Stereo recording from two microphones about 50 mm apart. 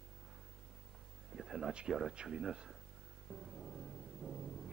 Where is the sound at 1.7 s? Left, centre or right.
Centre.